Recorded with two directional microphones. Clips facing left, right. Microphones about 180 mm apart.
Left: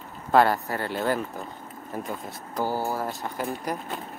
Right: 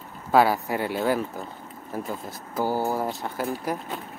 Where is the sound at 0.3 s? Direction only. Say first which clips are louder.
Right 1 dB; 5° right (ahead or behind).